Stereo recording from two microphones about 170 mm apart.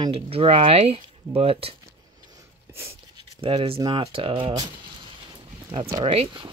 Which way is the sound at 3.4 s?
35° right (ahead or behind).